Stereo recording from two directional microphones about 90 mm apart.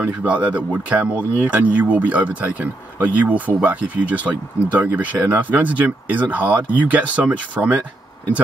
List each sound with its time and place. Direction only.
0.0 s speech: 15° right (ahead or behind)